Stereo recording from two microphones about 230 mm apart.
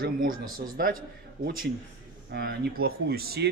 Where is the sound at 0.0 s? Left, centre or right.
Right.